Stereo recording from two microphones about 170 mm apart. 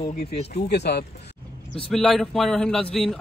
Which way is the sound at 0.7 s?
75° left (ahead or behind).